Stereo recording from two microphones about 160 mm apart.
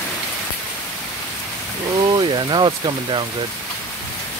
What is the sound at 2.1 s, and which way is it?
Speech, 30° right (ahead or behind).